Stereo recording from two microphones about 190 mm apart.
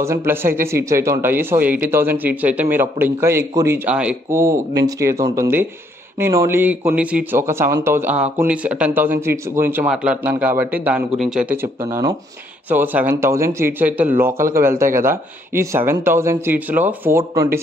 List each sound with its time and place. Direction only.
0.0 s speech: 15° right (ahead or behind)